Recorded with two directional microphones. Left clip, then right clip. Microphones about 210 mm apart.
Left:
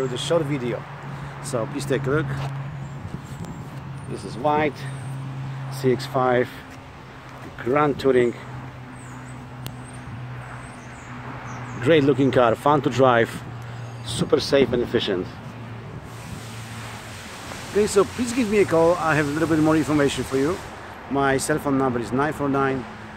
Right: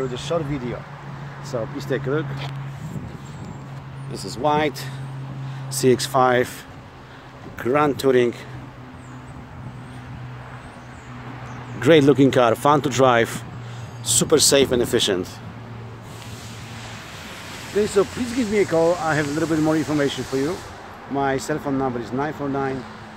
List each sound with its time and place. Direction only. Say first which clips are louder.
0.1 s speech: left 2 dB; 5° left (ahead or behind)
1.8 s speech: left 1 dB; centre (ahead or behind)
4.1 s speech: right 1 dB; 50° right (ahead or behind)
7.5 s speech: right 1 dB; 35° right (ahead or behind)
11.8 s speech: right 4 dB; 25° right (ahead or behind)
14.0 s speech: right 5 dB; 45° right (ahead or behind)
17.8 s speech: even; 10° right (ahead or behind); by 22.8 s 15° left (ahead or behind)